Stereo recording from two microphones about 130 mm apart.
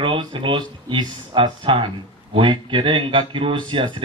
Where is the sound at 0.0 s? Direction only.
40° right (ahead or behind).